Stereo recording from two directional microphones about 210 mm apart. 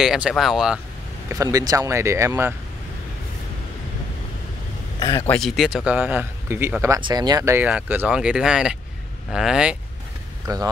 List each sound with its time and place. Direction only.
0.0 s speech: centre (ahead or behind)
1.3 s speech: 15° right (ahead or behind)
5.0 s speech: 20° left (ahead or behind)
5.3 s speech: centre (ahead or behind)